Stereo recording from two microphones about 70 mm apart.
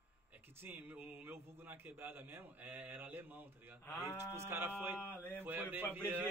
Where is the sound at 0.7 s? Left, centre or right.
Right.